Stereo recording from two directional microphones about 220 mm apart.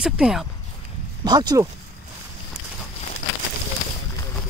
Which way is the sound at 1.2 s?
20° right (ahead or behind).